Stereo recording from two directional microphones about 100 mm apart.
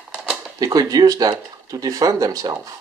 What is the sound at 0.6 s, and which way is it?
Speech, 35° right (ahead or behind).